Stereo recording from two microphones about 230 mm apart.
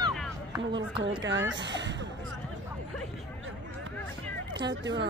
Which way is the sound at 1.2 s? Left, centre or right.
Right.